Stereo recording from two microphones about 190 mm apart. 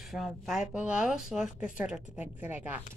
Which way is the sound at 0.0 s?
Centre (ahead or behind).